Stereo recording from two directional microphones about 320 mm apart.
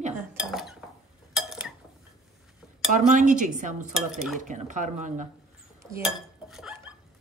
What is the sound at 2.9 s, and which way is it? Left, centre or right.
Dishes, right.